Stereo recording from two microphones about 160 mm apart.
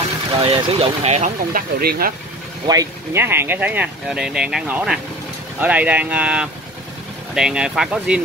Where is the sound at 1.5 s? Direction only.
70° right (ahead or behind).